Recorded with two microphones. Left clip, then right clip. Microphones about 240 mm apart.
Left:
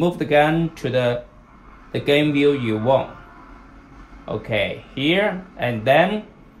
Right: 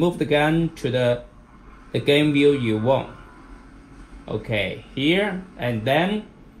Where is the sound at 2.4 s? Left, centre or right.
Left.